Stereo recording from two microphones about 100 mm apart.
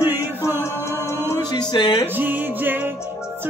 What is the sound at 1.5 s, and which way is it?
Speech, 45° left (ahead or behind).